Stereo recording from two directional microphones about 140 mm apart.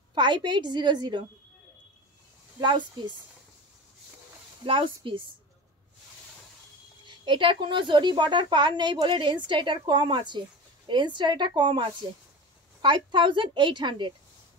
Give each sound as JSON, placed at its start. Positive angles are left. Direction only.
{"t": 0.1, "sound": "speech", "side_deg": -35}
{"t": 2.6, "sound": "speech", "side_deg": -35}
{"t": 4.6, "sound": "speech", "side_deg": -40}
{"t": 7.1, "sound": "speech", "side_deg": -35}